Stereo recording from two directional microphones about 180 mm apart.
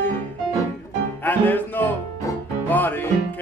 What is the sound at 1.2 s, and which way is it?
Music, 10° left (ahead or behind).